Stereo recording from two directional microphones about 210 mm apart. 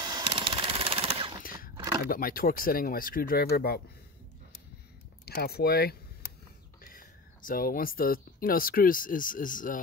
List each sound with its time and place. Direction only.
0.0 s a sound: 20° right (ahead or behind)
2.0 s speech: 40° left (ahead or behind)
5.2 s speech: 50° left (ahead or behind)